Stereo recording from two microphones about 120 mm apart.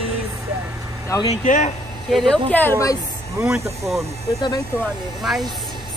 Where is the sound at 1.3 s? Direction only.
80° left.